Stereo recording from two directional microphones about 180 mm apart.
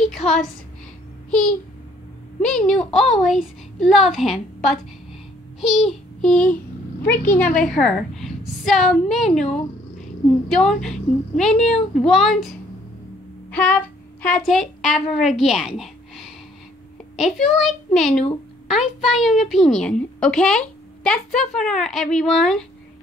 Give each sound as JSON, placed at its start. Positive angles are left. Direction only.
{"t": 2.4, "sound": "a child's voice", "side_deg": 5}
{"t": 13.5, "sound": "a woman's voice", "side_deg": 10}